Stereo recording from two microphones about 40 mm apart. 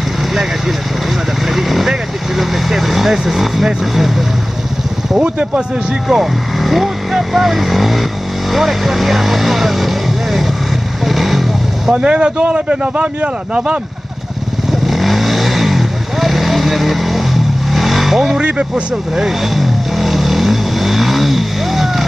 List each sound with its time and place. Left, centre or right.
1.5 s speech: centre
5.2 s speech: right
6.0 s speech: centre
11.1 s vehicle: centre
11.9 s speech: right
14.9 s vehicle: centre